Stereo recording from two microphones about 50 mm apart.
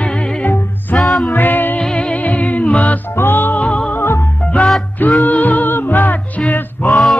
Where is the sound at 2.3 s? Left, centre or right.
Left.